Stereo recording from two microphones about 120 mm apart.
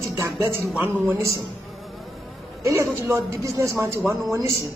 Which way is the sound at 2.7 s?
25° right (ahead or behind).